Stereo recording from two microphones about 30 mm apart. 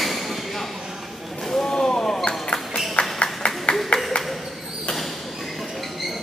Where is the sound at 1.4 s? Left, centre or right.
Centre.